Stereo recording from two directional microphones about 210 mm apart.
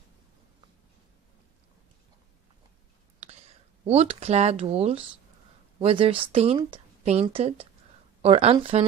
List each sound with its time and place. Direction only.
3.2 s a woman's voice: 30° right (ahead or behind)